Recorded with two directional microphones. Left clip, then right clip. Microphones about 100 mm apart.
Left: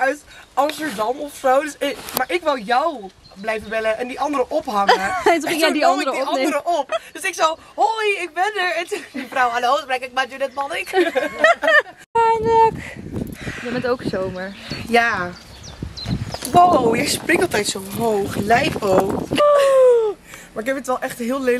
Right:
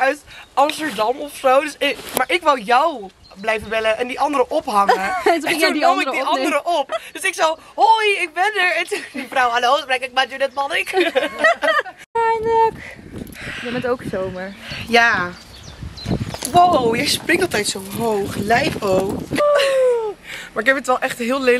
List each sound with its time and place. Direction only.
0.6 s speech: 20° right (ahead or behind)
11.7 s speech: 10° left (ahead or behind)
14.7 s speech: 15° right (ahead or behind)
16.3 s a sound: 15° right (ahead or behind)
16.7 s speech: 5° right (ahead or behind)
17.3 s speech: 15° right (ahead or behind)